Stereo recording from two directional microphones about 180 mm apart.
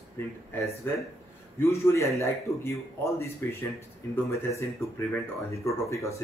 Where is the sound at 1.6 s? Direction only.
15° left (ahead or behind).